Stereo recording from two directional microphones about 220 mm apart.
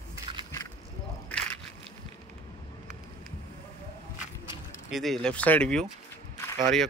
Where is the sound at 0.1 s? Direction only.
20° right (ahead or behind).